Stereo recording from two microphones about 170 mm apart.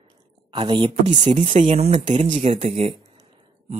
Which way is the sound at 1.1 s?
45° right (ahead or behind).